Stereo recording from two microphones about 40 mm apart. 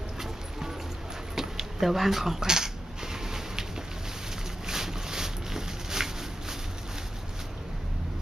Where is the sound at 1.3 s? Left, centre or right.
Centre.